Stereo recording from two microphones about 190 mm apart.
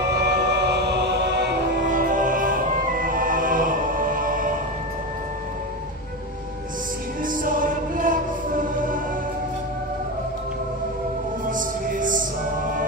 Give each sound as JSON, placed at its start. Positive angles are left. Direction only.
{"t": 0.2, "sound": "music", "side_deg": -60}
{"t": 1.9, "sound": "music", "side_deg": -45}
{"t": 7.2, "sound": "music", "side_deg": -45}
{"t": 11.5, "sound": "music", "side_deg": -45}